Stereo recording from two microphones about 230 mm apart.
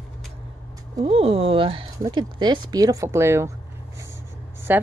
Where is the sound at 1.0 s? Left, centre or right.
Right.